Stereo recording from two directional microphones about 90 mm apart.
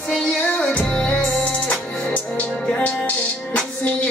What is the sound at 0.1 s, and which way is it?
Music, 10° left (ahead or behind).